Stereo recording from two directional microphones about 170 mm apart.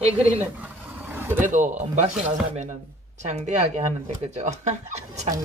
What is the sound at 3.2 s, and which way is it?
Speech, 45° right (ahead or behind).